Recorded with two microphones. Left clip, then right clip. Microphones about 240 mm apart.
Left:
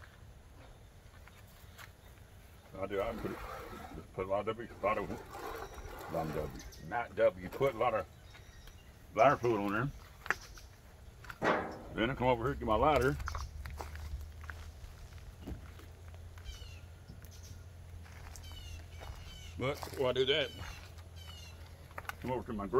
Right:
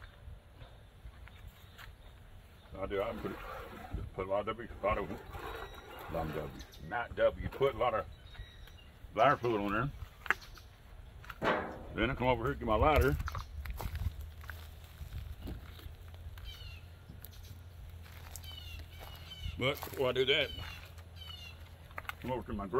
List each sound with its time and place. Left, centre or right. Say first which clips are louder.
2.7 s speech: even; centre
9.1 s speech: left 1 dB; centre
10.3 s a sound: right 2 dB; centre
11.9 s a sound: even; centre
19.6 s speech: right 3 dB; right
20.0 s speech: even; right
21.9 s speech: even; centre